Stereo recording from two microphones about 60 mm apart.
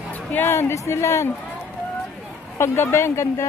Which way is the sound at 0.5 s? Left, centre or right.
Left.